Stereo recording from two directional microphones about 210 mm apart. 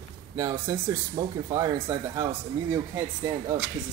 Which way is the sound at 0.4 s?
15° right (ahead or behind).